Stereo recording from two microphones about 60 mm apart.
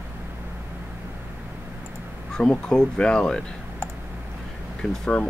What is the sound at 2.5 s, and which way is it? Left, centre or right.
Speech, centre.